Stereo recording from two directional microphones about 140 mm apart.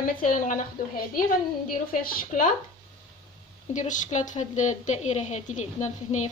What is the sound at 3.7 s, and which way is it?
A woman's voice, 65° left (ahead or behind).